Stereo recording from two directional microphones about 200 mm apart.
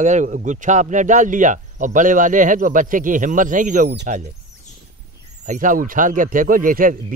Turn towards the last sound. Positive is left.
turn(degrees=-45)  # may be behind; listen again after turning